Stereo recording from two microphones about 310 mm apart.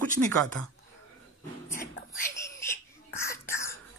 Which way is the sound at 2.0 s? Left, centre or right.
Left.